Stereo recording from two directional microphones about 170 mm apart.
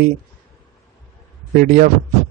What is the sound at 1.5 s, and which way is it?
Speech, 55° right (ahead or behind).